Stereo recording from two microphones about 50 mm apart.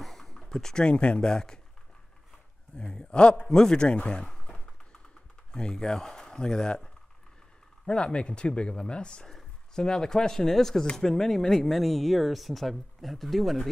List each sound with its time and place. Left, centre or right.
0.0 s speech: centre
2.8 s speech: centre
4.0 s a sound: centre
5.5 s speech: centre